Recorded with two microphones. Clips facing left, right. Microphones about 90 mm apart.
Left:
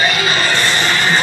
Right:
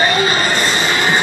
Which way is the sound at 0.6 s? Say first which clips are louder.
Even; 15° right (ahead or behind).